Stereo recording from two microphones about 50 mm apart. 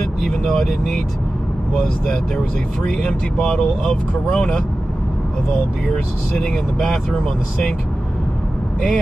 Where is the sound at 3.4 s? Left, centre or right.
Centre.